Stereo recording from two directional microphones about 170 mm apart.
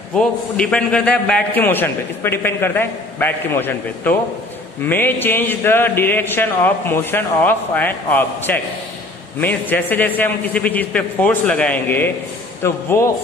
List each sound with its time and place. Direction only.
0.1 s a man's voice: 5° left (ahead or behind)